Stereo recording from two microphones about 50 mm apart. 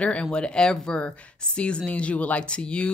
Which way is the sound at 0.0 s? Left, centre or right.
Left.